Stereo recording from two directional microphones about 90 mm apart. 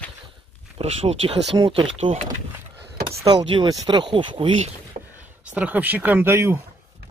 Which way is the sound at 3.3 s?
60° right (ahead or behind).